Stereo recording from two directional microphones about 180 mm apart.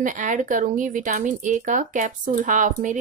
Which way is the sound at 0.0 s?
45° right (ahead or behind).